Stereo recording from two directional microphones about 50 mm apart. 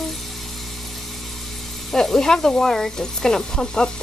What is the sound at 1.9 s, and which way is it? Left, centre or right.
Speech, centre.